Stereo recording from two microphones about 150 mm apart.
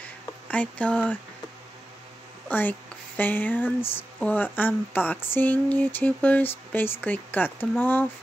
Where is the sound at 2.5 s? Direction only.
10° left (ahead or behind).